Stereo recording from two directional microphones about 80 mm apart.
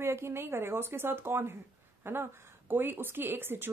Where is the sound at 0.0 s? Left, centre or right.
Right.